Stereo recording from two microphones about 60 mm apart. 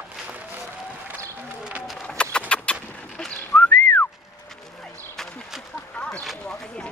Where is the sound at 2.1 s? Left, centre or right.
Centre.